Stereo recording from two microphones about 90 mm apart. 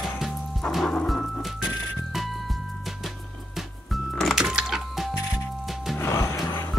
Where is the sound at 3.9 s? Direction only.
5° left (ahead or behind).